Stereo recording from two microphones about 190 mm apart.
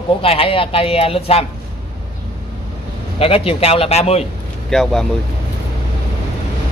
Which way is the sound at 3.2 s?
30° left (ahead or behind).